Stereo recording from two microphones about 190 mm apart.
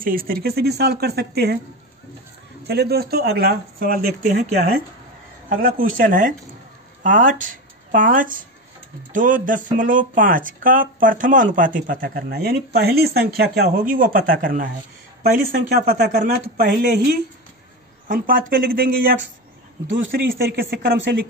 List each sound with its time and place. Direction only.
0.0 s speech: 50° right (ahead or behind)
2.6 s speech: 60° right (ahead or behind)
16.0 s speech: 50° right (ahead or behind)
18.0 s speech: 50° right (ahead or behind)
20.2 s speech: 55° right (ahead or behind)